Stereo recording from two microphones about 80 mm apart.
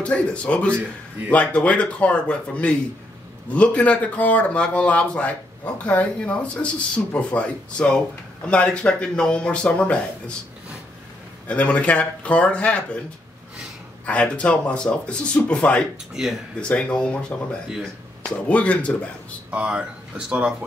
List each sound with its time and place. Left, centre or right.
0.0 s speech: centre
11.4 s speech: centre
14.0 s speech: centre
19.5 s speech: centre